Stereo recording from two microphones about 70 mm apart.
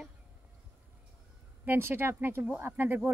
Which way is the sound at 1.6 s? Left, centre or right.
Right.